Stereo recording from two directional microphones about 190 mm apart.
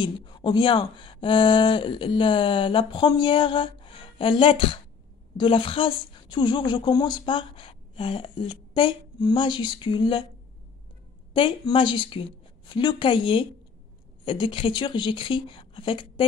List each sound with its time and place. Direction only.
0.0 s speech: 20° left (ahead or behind)
11.3 s speech: 25° left (ahead or behind)